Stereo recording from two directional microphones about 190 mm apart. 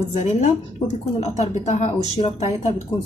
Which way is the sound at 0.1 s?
35° left (ahead or behind).